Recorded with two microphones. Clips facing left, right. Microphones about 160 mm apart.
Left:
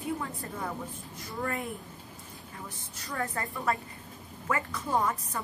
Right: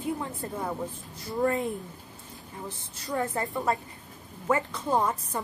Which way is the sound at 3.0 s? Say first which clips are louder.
Right 5 dB; 20° right (ahead or behind).